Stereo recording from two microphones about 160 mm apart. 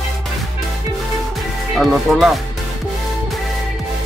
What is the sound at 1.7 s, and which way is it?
Speech, centre (ahead or behind).